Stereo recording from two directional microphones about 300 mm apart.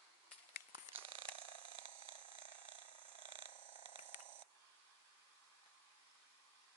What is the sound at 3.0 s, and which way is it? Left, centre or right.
Purr, left.